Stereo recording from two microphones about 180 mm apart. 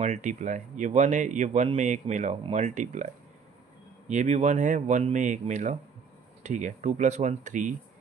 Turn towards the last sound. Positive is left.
turn(degrees=-45)  # may be behind; listen again after turning